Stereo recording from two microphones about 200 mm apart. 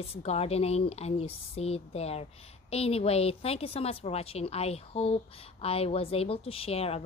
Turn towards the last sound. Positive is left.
turn(degrees=30)  # may be behind; listen again after turning